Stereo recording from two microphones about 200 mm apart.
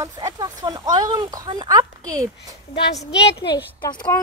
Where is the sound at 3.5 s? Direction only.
20° left (ahead or behind).